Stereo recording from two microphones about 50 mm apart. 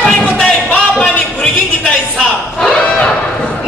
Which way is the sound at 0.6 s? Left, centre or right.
Centre.